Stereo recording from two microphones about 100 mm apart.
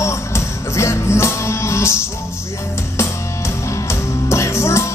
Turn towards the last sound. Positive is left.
turn(degrees=25)  # may be behind; listen again after turning